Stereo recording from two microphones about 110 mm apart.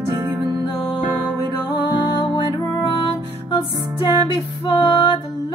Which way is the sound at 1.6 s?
40° left (ahead or behind).